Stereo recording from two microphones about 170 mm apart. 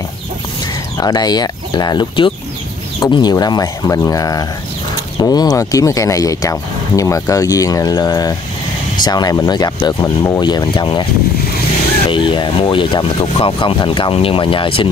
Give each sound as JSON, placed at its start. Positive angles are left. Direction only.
{"t": 0.9, "sound": "speech", "side_deg": 25}
{"t": 12.1, "sound": "speech", "side_deg": 30}